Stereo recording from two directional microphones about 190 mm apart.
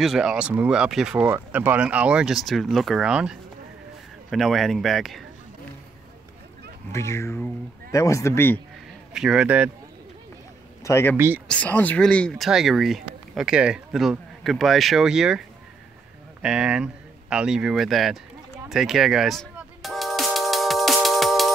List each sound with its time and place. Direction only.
0.0 s speech: centre (ahead or behind)
6.9 s speech: 15° left (ahead or behind)
9.1 s speech: 5° right (ahead or behind)
10.8 s a man's voice: 15° left (ahead or behind)
11.1 s speech: 10° right (ahead or behind)
11.4 s speech: 5° left (ahead or behind)
16.4 s speech: 5° right (ahead or behind)
18.7 s music: centre (ahead or behind)